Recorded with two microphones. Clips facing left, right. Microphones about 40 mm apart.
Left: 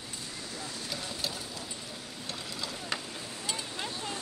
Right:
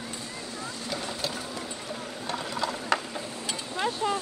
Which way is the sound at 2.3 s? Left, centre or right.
Right.